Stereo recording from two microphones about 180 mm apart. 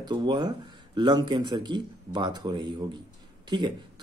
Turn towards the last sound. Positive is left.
turn(degrees=-25)  # may be behind; listen again after turning